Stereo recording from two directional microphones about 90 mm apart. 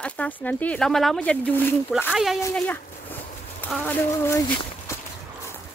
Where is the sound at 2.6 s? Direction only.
20° left (ahead or behind).